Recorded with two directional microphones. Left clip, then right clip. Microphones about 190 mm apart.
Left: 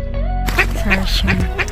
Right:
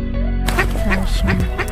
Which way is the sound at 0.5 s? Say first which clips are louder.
Left 3 dB; 60° right (ahead or behind).